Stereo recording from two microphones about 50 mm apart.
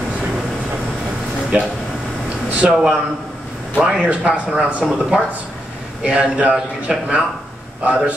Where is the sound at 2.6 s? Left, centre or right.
Right.